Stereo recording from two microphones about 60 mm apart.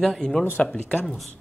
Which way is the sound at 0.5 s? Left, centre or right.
Left.